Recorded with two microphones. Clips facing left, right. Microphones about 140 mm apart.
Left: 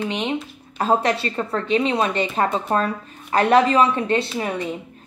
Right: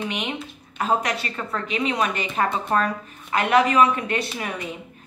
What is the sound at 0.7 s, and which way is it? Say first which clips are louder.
A woman's voice: left 4 dB; 30° left (ahead or behind).